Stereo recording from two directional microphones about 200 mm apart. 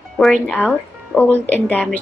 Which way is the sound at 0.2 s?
5° left (ahead or behind).